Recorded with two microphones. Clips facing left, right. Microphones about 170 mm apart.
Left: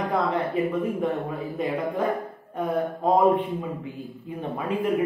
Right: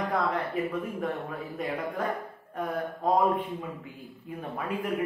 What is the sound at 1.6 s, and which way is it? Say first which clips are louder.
A man's voice: left 6 dB; 15° left (ahead or behind).